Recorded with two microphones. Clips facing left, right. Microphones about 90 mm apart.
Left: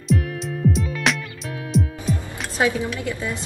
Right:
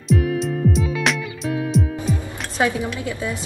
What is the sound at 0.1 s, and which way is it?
Music, centre (ahead or behind).